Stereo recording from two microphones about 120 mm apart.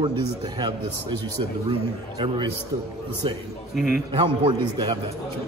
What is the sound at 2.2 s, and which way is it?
Speech, 45° right (ahead or behind).